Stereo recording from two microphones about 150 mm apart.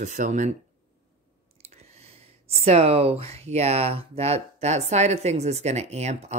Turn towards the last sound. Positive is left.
turn(degrees=-50)  # may be behind; listen again after turning